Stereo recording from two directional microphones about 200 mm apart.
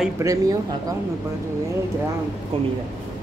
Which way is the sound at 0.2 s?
15° right (ahead or behind).